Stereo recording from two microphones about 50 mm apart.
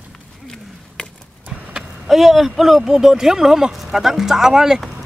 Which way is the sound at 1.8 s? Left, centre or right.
Centre.